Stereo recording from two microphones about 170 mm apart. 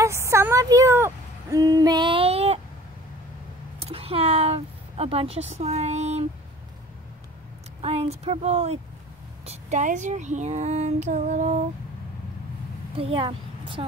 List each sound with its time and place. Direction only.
0.0 s speech: 15° right (ahead or behind); by 2.6 s 35° right (ahead or behind)
3.8 s speech: 35° right (ahead or behind)
7.8 s speech: 35° right (ahead or behind)
12.9 s speech: 30° right (ahead or behind)